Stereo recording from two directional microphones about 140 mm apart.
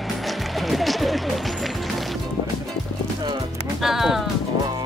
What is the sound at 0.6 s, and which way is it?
Music, centre (ahead or behind).